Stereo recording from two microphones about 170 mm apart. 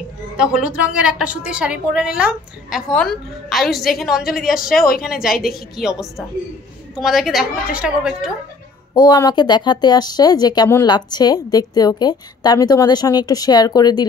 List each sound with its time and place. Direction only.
0.4 s a woman's voice: 5° right (ahead or behind)
4.7 s speech: 60° left (ahead or behind)
5.2 s a woman's voice: centre (ahead or behind)
8.9 s speech: 20° left (ahead or behind)